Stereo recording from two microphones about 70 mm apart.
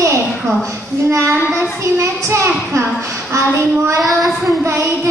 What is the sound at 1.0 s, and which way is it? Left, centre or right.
A child's voice, right.